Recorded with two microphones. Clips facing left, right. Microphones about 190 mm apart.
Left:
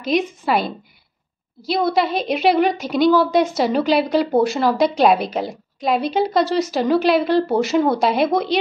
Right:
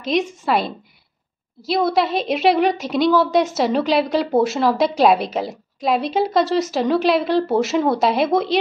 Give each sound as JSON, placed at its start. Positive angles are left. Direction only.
{"t": 0.0, "sound": "a woman's voice", "side_deg": 0}